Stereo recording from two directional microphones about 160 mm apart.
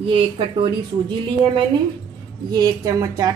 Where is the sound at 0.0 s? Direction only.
30° right (ahead or behind).